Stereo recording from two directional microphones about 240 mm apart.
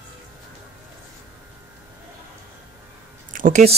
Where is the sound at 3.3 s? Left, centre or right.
Right.